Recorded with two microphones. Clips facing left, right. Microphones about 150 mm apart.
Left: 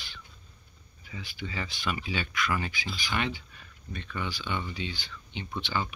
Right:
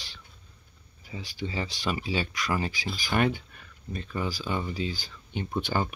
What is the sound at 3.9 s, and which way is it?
Speech, 35° right (ahead or behind).